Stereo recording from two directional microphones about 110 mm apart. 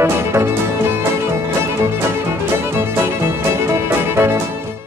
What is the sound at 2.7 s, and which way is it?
Music, 25° right (ahead or behind).